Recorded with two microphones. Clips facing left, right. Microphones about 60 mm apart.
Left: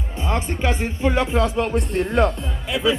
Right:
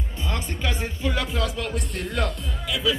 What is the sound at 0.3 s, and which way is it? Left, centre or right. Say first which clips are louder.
Speech: left 7 dB; left.